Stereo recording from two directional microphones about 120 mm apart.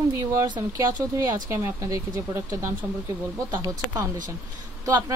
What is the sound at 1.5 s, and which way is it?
Speech, 25° right (ahead or behind).